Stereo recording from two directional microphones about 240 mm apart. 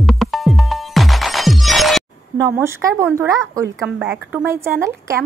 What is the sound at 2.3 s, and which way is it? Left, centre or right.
A woman's voice, centre.